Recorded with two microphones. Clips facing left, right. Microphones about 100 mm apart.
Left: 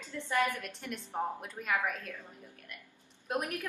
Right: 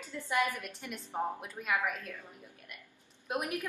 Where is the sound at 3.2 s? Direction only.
5° right (ahead or behind).